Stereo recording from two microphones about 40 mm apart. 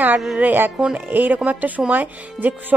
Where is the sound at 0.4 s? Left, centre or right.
Right.